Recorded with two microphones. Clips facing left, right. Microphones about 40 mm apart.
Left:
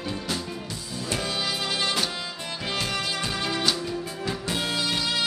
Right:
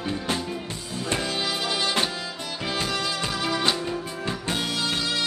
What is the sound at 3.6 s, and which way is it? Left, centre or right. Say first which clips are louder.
Music: right 1 dB; right.